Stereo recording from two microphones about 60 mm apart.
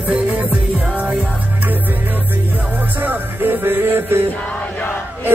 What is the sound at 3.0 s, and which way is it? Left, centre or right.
Music, right.